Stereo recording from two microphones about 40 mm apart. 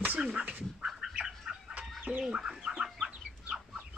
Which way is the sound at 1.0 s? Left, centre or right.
Right.